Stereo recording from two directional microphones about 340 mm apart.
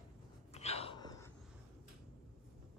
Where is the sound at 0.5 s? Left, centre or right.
Centre.